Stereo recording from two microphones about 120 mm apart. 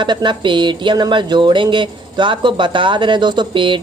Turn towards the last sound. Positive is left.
turn(degrees=-40)  # may be behind; listen again after turning